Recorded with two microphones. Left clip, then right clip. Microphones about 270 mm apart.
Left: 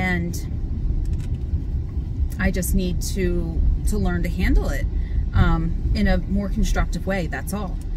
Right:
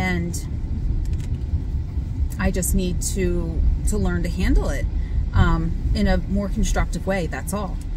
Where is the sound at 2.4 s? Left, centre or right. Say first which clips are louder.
Even; centre.